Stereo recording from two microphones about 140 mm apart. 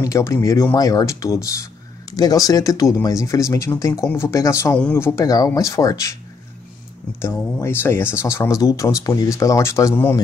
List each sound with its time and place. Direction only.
0.0 s speech: 20° left (ahead or behind)
7.2 s speech: 15° left (ahead or behind)